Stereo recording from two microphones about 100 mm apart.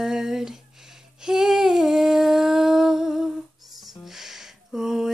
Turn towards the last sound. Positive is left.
turn(degrees=-5)  # may be behind; listen again after turning